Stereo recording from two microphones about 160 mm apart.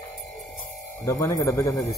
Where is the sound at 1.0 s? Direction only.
20° left (ahead or behind).